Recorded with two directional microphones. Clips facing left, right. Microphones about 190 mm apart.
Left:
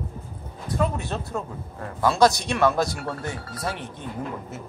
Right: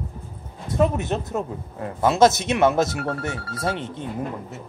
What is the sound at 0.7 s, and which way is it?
Speech, 20° right (ahead or behind).